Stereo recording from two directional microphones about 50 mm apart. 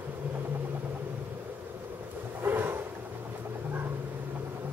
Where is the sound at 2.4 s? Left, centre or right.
Right.